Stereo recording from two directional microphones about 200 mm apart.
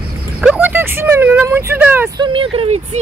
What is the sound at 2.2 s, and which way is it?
Speech, 25° right (ahead or behind).